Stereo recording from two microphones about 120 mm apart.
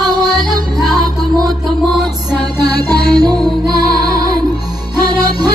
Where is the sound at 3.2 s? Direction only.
35° right (ahead or behind).